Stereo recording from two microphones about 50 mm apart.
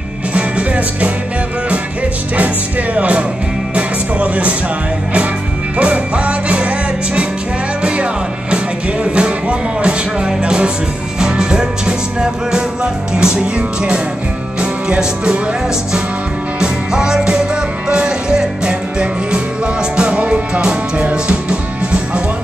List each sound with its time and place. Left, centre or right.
0.3 s music: right
2.3 s music: right
5.8 s music: right
7.8 s music: right
16.5 s music: centre